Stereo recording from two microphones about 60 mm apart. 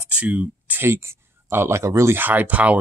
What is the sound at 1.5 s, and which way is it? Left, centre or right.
Speech, right.